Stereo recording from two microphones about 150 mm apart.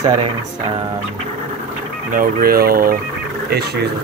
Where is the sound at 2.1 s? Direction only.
70° right (ahead or behind).